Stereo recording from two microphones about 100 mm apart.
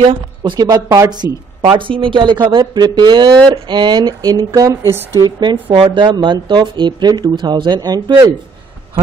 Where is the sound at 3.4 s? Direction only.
50° right (ahead or behind); by 5.0 s 30° right (ahead or behind).